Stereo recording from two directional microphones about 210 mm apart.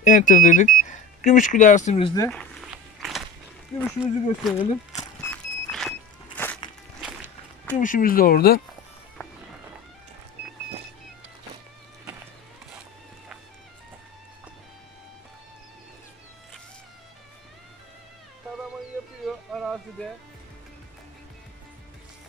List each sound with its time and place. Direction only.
0.0 s speech: 35° left (ahead or behind)
3.0 s a sound: centre (ahead or behind)
3.7 s speech: centre (ahead or behind)
5.2 s vehicle: 5° left (ahead or behind)
7.0 s music: 5° right (ahead or behind)
7.8 s speech: 40° left (ahead or behind)
19.2 s music: centre (ahead or behind)